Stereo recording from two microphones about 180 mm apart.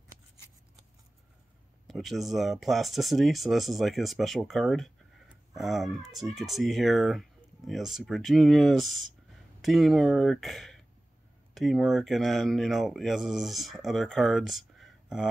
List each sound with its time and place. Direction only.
1.9 s speech: centre (ahead or behind)